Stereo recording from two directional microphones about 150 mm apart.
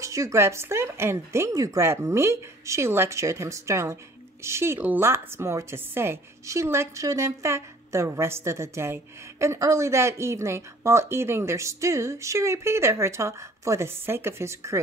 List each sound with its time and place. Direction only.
0.0 s speech: 20° right (ahead or behind)